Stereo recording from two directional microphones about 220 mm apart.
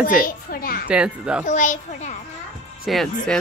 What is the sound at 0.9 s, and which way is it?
Speech, 5° right (ahead or behind).